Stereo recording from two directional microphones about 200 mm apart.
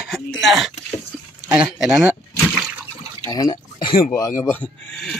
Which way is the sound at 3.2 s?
15° left (ahead or behind).